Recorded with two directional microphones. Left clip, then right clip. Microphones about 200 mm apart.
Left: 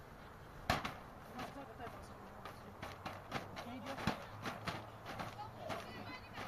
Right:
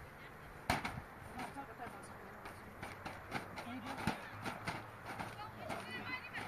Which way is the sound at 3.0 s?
5° left (ahead or behind).